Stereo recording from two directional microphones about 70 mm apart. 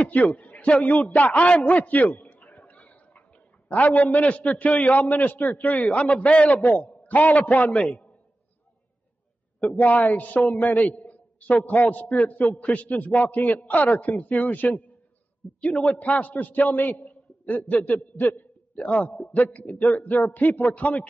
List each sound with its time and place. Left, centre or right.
0.0 s a man's voice: left
9.8 s a man's voice: left